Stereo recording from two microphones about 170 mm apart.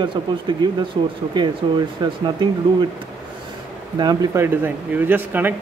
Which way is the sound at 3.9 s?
25° right (ahead or behind).